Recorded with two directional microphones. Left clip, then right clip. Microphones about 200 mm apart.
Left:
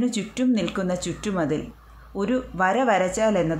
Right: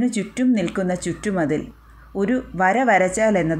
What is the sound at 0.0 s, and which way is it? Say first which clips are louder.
Speech: right 3 dB; 10° right (ahead or behind).